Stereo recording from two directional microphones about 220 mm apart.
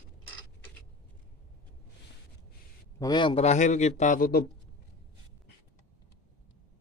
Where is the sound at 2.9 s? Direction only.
20° left (ahead or behind); by 4.4 s 40° left (ahead or behind).